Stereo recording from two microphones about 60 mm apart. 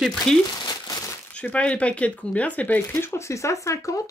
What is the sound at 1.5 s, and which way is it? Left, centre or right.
Speech, left.